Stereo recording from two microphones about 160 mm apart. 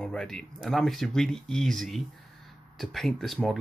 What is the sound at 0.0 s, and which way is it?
Speech, 5° left (ahead or behind).